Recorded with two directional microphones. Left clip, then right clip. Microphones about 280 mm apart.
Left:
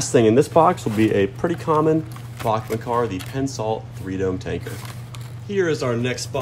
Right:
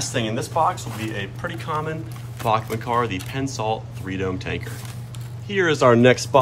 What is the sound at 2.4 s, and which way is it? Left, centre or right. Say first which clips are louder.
Speech: right 1 dB; centre.